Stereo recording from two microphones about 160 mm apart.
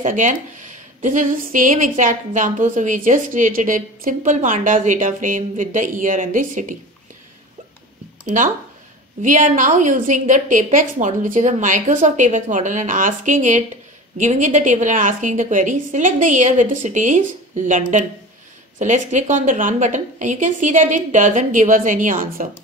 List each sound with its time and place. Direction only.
0.0 s speech: 50° right (ahead or behind)
8.3 s speech: 45° right (ahead or behind)